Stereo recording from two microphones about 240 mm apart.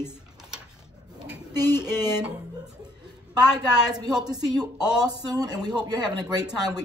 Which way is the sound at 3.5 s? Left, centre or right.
Centre.